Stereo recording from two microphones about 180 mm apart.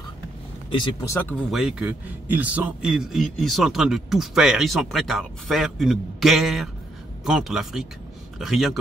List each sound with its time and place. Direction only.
0.7 s speech: 25° left (ahead or behind)
1.0 s speech: 15° left (ahead or behind)
1.5 s a man's voice: 5° right (ahead or behind)